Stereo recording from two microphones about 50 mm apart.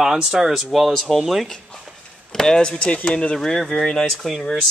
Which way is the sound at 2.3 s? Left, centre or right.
Centre.